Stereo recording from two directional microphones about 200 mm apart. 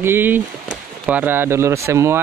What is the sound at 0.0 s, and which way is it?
Speech, 10° right (ahead or behind).